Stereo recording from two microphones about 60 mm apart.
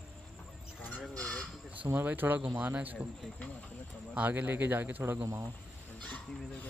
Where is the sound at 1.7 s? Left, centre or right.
Right.